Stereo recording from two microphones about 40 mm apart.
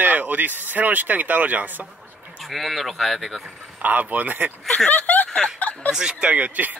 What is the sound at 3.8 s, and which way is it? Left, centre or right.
Speech, right.